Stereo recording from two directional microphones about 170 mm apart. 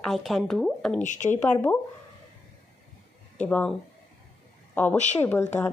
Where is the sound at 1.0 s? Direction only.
45° left (ahead or behind).